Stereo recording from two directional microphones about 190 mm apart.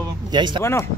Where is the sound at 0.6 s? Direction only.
15° left (ahead or behind).